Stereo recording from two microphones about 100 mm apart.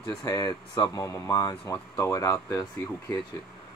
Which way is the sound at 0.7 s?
50° left (ahead or behind).